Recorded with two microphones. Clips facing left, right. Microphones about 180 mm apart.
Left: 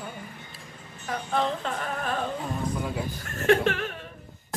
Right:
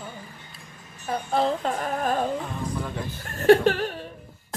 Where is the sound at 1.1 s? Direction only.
35° right (ahead or behind).